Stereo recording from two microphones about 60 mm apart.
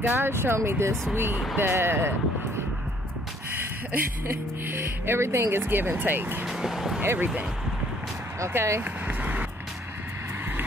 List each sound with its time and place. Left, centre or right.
0.0 s speech: right
6.4 s speech: centre
7.0 s speech: right
8.4 s speech: right
8.8 s vehicle: right